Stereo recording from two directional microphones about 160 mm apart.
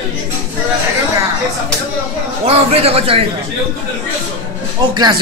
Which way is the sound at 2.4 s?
40° right (ahead or behind).